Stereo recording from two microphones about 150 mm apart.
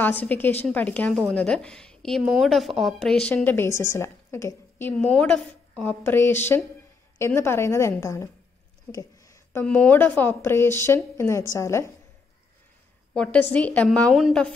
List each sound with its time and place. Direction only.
0.0 s a woman's voice: 10° left (ahead or behind)
8.9 s a sound: 20° left (ahead or behind)
9.8 s a woman's voice: 10° left (ahead or behind)
13.1 s a woman's voice: 10° left (ahead or behind)